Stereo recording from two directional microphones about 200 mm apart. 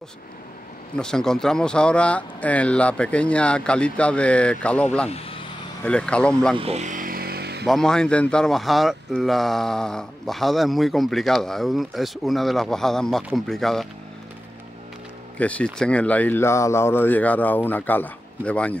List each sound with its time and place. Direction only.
0.9 s speech: 5° left (ahead or behind)
5.1 s vehicle: 30° left (ahead or behind)
5.9 s speech: 5° left (ahead or behind)
6.5 s vehicle: 30° right (ahead or behind); by 7.6 s 55° right (ahead or behind)
7.6 s speech: centre (ahead or behind)
15.3 s speech: 5° left (ahead or behind)